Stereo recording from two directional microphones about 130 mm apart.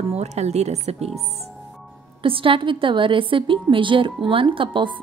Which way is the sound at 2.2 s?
40° right (ahead or behind).